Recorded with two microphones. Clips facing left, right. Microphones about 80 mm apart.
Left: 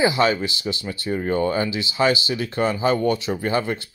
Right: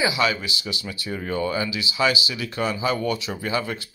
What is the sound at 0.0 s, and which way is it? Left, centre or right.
Speech, left.